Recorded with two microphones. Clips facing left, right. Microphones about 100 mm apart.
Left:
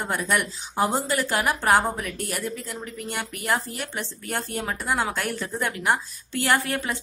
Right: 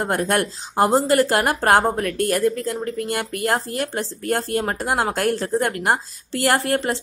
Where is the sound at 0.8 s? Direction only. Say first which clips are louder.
Right 9 dB; 35° right (ahead or behind).